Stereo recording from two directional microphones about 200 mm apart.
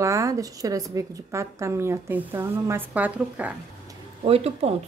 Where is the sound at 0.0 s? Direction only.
15° right (ahead or behind).